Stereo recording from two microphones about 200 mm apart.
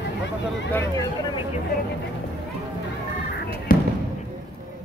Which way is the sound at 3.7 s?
45° left (ahead or behind).